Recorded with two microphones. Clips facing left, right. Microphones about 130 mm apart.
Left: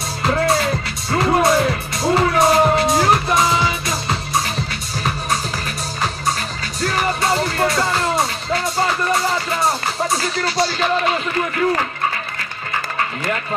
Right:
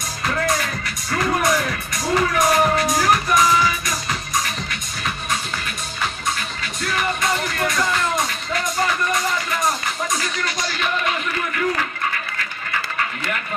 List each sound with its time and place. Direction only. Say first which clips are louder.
0.2 s music: left 5 dB; 30° left (ahead or behind)
6.8 s music: left 4 dB; 35° left (ahead or behind)